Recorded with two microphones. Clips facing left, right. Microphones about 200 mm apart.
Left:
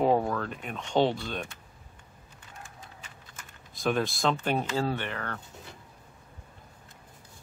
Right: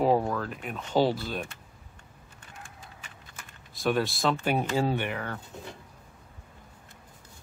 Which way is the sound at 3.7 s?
Centre (ahead or behind).